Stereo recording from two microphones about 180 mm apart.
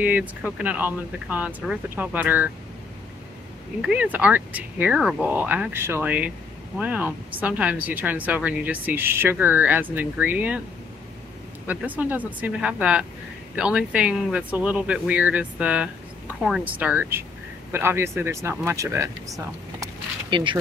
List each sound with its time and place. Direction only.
0.0 s speech: 10° right (ahead or behind)
3.8 s speech: 5° right (ahead or behind)
11.6 s speech: 10° right (ahead or behind); by 20.5 s 25° right (ahead or behind)